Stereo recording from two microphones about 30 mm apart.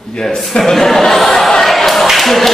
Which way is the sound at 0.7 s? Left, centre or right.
Centre.